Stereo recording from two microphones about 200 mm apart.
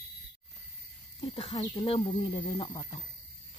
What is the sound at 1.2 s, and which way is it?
Speech, 25° left (ahead or behind).